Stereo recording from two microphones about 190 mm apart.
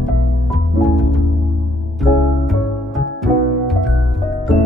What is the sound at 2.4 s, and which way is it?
Music, centre (ahead or behind).